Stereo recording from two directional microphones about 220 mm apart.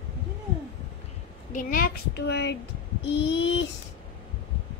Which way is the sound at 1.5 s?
40° left (ahead or behind).